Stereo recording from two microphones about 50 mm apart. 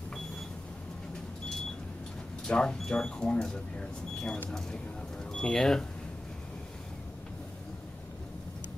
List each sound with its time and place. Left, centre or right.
2.4 s speech: centre